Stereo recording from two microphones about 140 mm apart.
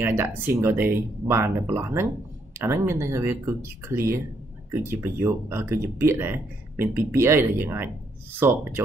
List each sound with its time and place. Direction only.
0.0 s speech: 15° right (ahead or behind)